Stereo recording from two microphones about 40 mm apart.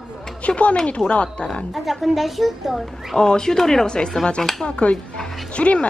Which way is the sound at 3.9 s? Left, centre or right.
Left.